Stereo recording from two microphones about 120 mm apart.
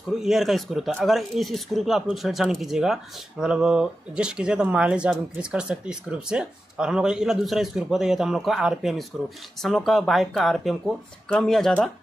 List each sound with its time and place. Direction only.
0.2 s speech: centre (ahead or behind)